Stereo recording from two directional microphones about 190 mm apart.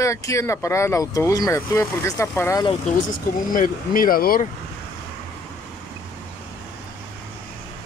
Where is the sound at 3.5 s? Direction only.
45° left (ahead or behind).